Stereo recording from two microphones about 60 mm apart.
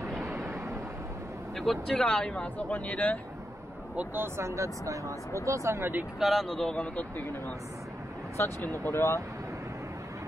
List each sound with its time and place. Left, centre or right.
0.1 s vehicle: centre
0.4 s a sound: right
1.6 s speech: centre
2.0 s speech: centre
4.1 s speech: right
4.5 s speech: right
6.1 s speech: centre
6.7 s speech: left